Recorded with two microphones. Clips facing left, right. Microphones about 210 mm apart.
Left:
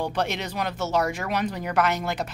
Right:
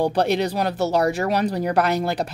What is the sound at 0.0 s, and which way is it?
A woman's voice, 35° right (ahead or behind).